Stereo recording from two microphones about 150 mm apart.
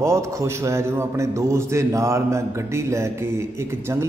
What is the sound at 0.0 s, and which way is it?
A man's voice, 20° right (ahead or behind).